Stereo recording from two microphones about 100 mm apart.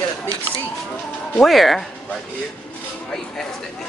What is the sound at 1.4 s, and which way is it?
Speech, centre (ahead or behind).